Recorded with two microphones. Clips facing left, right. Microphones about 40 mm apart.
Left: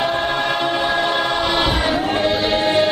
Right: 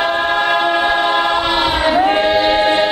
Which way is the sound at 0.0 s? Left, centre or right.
Right.